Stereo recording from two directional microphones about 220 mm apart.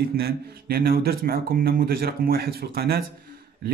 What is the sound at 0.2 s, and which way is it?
Speech, 45° right (ahead or behind).